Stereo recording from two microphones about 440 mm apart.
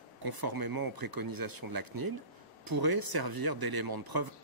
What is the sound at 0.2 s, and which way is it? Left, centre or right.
Speech, right.